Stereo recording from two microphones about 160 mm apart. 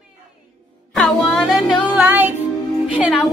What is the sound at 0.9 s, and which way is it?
Music, centre (ahead or behind).